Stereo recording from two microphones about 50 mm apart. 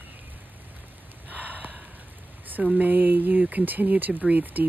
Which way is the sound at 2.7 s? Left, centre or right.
Right.